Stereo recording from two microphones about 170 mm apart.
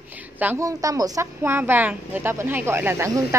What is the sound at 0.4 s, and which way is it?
Speech, 15° right (ahead or behind).